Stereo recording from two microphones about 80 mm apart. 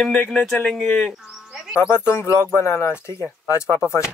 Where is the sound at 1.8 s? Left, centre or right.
Left.